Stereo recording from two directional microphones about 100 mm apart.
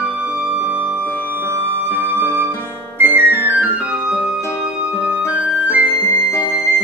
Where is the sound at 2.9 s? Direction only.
20° right (ahead or behind).